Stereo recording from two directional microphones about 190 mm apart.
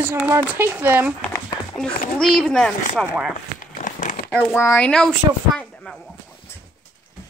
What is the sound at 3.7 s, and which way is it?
Crumpling, 45° left (ahead or behind).